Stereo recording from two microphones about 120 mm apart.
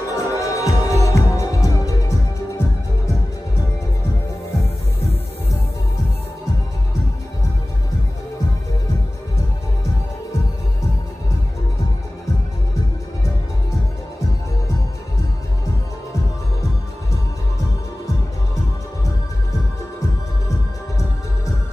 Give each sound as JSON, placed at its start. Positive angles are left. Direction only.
{"t": 0.1, "sound": "music", "side_deg": 25}